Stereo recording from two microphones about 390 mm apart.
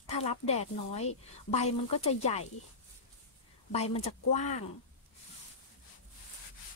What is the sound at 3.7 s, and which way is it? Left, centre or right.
Speech, centre.